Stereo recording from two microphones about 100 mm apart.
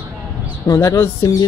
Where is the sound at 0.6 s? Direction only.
35° left (ahead or behind).